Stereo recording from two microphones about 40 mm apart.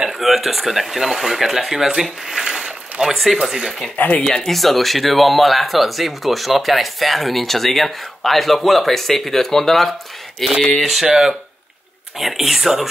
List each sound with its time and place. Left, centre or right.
0.2 s speech: centre
3.9 s speech: left
4.2 s speech: centre
4.6 s speech: centre